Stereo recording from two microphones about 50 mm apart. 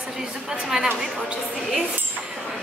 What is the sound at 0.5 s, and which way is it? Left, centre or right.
Speech, centre.